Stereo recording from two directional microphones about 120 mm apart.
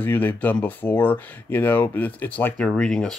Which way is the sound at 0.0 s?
15° left (ahead or behind).